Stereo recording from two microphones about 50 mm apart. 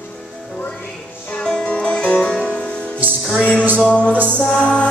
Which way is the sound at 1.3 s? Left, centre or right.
Centre.